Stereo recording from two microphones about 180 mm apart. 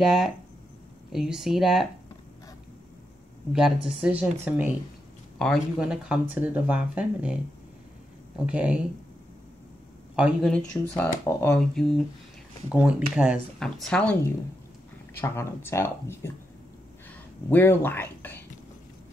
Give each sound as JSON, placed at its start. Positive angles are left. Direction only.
{"t": 0.0, "sound": "speech", "side_deg": 0}
{"t": 3.5, "sound": "speech", "side_deg": -5}
{"t": 8.5, "sound": "speech", "side_deg": -5}
{"t": 10.1, "sound": "speech", "side_deg": -5}
{"t": 10.5, "sound": "speech", "side_deg": 5}
{"t": 15.1, "sound": "speech", "side_deg": 15}
{"t": 17.5, "sound": "speech", "side_deg": 10}